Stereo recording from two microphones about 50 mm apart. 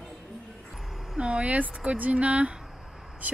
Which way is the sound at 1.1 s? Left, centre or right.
Right.